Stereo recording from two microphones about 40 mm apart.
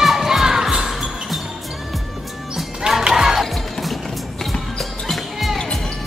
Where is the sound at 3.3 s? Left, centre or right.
Centre.